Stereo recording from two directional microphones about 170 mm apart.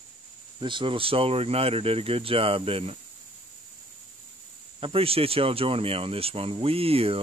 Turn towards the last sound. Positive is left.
turn(degrees=-35)  # may be behind; listen again after turning